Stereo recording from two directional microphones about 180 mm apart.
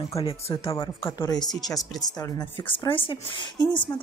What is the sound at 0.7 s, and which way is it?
A woman's voice, 15° left (ahead or behind).